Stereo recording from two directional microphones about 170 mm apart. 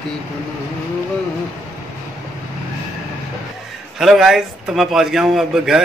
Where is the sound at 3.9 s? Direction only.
Centre (ahead or behind).